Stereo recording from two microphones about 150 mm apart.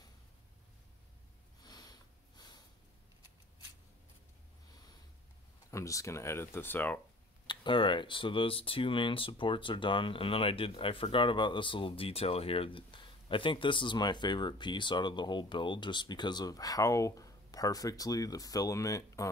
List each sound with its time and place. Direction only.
1.6 s sniff: 25° left (ahead or behind)
5.7 s speech: 20° left (ahead or behind)
7.4 s speech: 30° left (ahead or behind)